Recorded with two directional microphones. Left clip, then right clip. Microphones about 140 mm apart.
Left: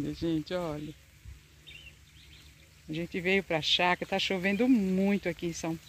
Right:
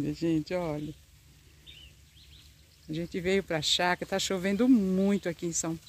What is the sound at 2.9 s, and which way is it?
Speech, 15° right (ahead or behind).